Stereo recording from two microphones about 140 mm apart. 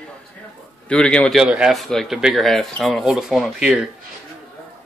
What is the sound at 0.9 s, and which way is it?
Speech, 5° left (ahead or behind).